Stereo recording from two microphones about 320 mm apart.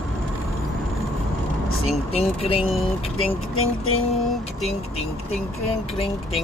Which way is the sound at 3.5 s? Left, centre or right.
Left.